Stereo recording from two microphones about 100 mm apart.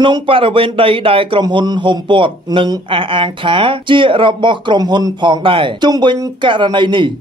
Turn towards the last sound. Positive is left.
turn(degrees=-50)  # may be behind; listen again after turning